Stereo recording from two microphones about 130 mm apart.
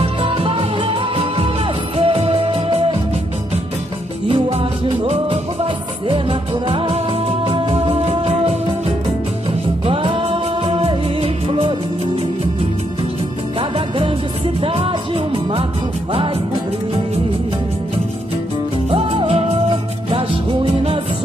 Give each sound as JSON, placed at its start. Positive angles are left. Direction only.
{"t": 0.0, "sound": "music", "side_deg": -45}
{"t": 4.3, "sound": "music", "side_deg": -45}
{"t": 13.6, "sound": "music", "side_deg": -45}
{"t": 18.9, "sound": "music", "side_deg": -45}